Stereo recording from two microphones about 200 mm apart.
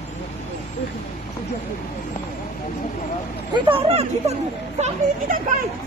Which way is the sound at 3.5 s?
25° right (ahead or behind).